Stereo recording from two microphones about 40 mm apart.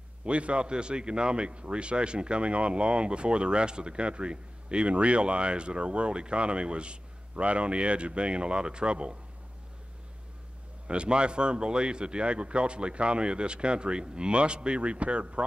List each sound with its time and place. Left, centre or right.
0.2 s a man's voice: right
10.9 s a man's voice: right